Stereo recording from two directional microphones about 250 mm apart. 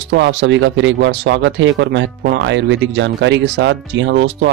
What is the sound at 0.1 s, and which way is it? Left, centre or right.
Speech, right.